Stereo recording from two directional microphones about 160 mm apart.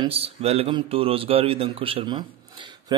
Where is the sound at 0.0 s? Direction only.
35° right (ahead or behind).